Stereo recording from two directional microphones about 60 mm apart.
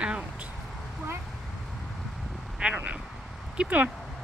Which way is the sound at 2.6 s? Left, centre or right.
Centre.